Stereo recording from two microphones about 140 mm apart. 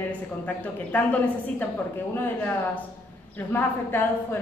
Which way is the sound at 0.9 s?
15° left (ahead or behind).